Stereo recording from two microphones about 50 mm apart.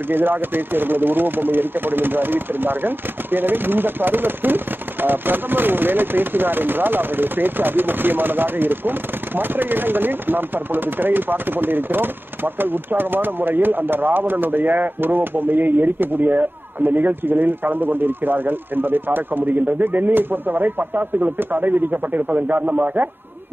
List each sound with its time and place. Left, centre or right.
0.1 s speech: right